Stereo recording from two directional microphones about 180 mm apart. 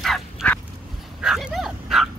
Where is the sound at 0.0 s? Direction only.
Centre (ahead or behind).